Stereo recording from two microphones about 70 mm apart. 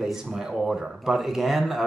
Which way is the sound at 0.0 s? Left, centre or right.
Centre.